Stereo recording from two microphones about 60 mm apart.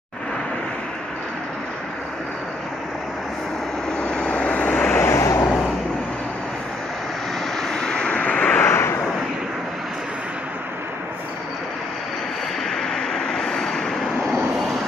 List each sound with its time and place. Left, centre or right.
3.9 s vehicle: centre
5.0 s vehicle: left
7.6 s vehicle: centre
8.5 s vehicle: left
12.6 s vehicle: centre